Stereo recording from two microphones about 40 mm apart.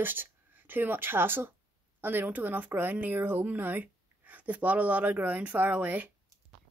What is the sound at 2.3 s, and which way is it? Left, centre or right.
Speech, right.